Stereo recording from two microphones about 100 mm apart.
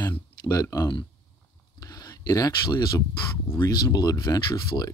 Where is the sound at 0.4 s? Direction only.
35° left (ahead or behind).